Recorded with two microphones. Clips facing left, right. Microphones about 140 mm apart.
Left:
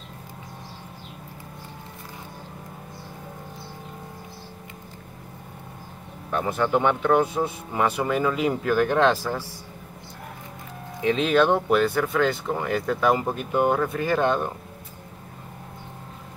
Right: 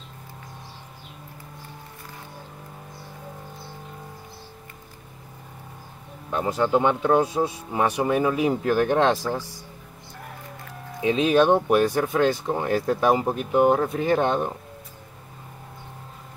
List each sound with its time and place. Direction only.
6.3 s speech: 20° right (ahead or behind)
11.0 s speech: 20° right (ahead or behind)
13.7 s speech: 25° right (ahead or behind)